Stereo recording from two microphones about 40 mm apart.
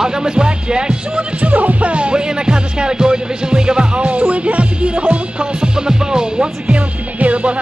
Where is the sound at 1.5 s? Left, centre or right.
Right.